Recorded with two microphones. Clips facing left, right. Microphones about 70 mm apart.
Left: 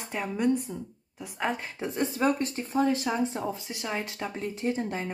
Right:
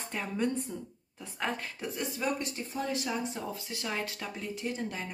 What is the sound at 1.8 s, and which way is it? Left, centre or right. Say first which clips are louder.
Speech: left 10 dB; left.